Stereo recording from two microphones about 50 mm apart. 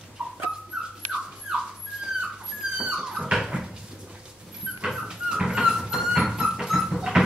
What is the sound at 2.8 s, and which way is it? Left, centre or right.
Dog, centre.